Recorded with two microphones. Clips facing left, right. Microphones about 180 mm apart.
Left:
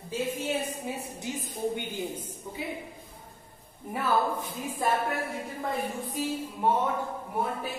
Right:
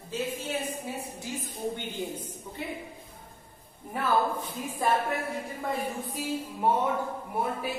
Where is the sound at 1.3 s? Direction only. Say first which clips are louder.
Left 2 dB; 20° left (ahead or behind).